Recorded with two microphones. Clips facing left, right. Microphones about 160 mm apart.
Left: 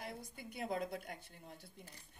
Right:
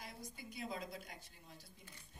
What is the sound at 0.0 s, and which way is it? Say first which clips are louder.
A woman's voice: left 4 dB; 60° left (ahead or behind).